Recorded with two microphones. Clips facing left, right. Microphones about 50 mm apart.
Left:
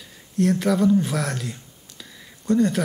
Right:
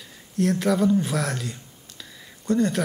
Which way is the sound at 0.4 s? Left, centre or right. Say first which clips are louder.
Left 2 dB; centre.